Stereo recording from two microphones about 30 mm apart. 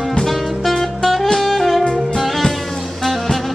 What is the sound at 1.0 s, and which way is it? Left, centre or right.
Saxophone, centre.